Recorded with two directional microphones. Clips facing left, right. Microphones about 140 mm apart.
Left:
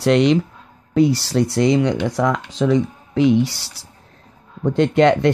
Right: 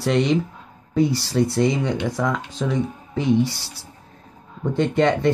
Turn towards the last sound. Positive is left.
turn(degrees=85)